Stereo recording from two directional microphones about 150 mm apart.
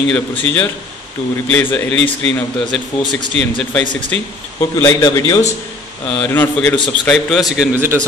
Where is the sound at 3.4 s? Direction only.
10° left (ahead or behind).